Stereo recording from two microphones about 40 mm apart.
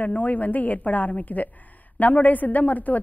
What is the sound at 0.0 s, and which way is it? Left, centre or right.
A woman's voice, left.